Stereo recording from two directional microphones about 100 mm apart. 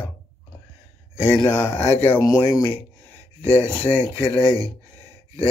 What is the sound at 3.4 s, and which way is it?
Speech, 15° left (ahead or behind).